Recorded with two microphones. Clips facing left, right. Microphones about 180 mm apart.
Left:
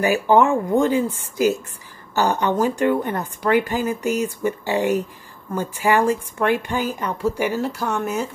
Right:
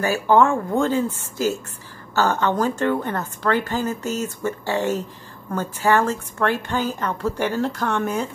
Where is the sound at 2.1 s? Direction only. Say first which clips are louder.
Left 1 dB; 15° left (ahead or behind).